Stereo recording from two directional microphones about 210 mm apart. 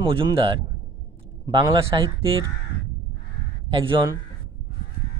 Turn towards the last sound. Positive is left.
turn(degrees=-25)  # may be behind; listen again after turning